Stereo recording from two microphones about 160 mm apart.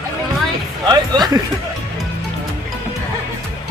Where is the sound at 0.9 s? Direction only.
25° right (ahead or behind).